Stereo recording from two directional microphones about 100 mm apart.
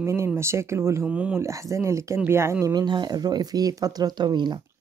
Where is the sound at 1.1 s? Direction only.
10° right (ahead or behind).